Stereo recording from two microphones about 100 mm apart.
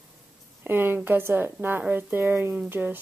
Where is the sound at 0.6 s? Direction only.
20° right (ahead or behind).